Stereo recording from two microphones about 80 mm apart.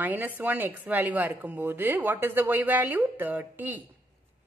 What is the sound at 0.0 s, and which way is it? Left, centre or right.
Speech, right.